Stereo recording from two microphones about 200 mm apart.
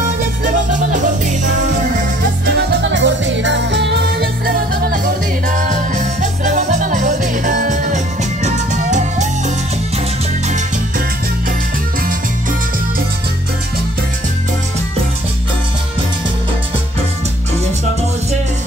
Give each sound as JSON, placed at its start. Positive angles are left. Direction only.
{"t": 2.4, "sound": "music", "side_deg": -55}
{"t": 5.5, "sound": "music", "side_deg": -40}